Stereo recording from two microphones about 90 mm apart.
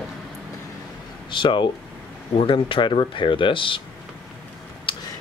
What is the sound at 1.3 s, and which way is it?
Speech, 65° left (ahead or behind).